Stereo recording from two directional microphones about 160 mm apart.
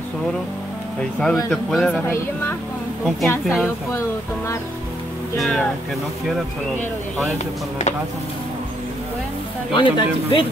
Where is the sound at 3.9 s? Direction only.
20° left (ahead or behind).